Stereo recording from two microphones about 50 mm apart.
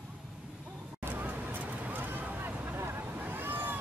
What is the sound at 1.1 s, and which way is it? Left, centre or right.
Vehicle, right.